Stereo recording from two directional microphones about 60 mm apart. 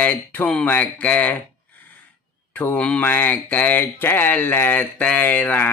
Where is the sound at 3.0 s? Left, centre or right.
Left.